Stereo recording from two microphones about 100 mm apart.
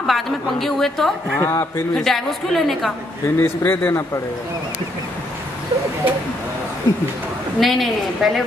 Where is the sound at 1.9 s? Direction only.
5° left (ahead or behind).